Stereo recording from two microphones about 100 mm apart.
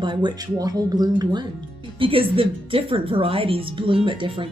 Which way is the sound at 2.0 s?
65° right (ahead or behind).